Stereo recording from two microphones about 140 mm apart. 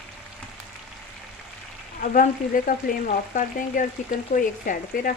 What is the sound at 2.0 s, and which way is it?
Frying, 75° left (ahead or behind).